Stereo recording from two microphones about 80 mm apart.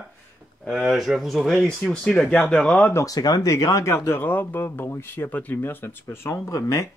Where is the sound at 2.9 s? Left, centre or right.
Left.